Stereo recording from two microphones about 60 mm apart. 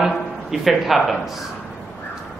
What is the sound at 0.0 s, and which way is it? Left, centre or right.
Speech, centre.